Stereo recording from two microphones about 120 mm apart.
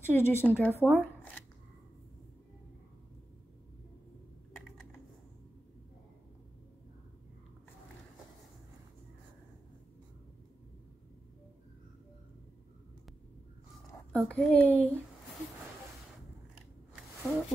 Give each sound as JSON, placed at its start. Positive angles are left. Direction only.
{"t": 0.0, "sound": "speech", "side_deg": 20}
{"t": 14.1, "sound": "speech", "side_deg": 10}
{"t": 17.3, "sound": "speech", "side_deg": 10}